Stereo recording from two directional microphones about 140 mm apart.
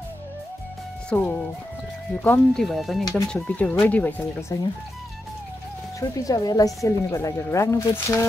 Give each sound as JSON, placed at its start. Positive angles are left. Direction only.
{"t": 1.1, "sound": "speech", "side_deg": 10}
{"t": 2.6, "sound": "speech", "side_deg": 0}
{"t": 5.9, "sound": "speech", "side_deg": 25}